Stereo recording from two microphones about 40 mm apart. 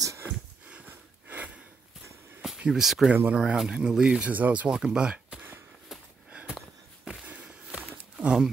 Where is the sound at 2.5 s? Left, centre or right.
Right.